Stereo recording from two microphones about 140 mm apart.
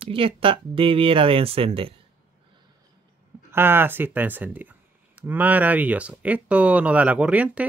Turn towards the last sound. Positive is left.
turn(degrees=-10)  # may be behind; listen again after turning